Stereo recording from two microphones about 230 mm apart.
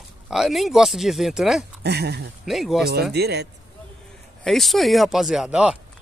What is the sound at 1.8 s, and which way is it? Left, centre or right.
Speech, right.